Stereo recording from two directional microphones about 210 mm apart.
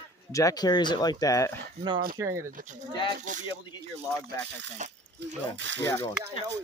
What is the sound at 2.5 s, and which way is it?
Speech, 35° right (ahead or behind).